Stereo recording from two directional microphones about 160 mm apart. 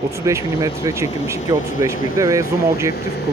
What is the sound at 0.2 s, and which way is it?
Speech, 20° right (ahead or behind).